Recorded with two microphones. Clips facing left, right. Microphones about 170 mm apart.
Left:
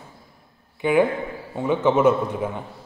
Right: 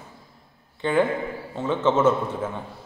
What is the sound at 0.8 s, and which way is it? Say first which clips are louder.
A man's voice: left 3 dB; 10° left (ahead or behind).